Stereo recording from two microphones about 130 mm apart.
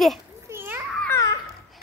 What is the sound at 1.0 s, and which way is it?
Babbling, 25° left (ahead or behind).